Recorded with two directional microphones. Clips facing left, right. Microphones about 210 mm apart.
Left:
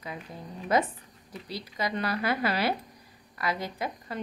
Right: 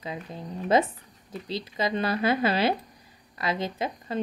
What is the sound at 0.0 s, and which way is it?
A woman's voice, 25° right (ahead or behind).